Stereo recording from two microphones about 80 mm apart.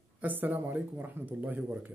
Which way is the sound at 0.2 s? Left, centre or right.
Right.